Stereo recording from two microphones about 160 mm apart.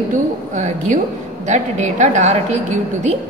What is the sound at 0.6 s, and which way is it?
A woman's voice, 50° right (ahead or behind).